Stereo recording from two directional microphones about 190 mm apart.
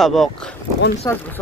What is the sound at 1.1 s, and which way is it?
Speech, 20° left (ahead or behind).